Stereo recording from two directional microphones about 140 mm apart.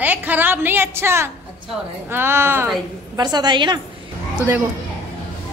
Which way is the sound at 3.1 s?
30° right (ahead or behind).